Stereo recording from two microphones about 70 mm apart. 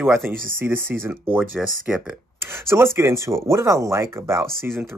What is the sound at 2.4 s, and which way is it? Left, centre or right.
Speech, right.